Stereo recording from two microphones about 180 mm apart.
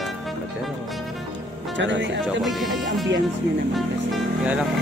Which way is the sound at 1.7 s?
90° right.